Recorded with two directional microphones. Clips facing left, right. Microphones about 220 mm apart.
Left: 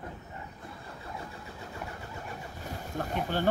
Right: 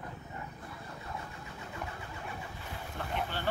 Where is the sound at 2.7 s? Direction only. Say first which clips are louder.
Left 5 dB; 45° left (ahead or behind).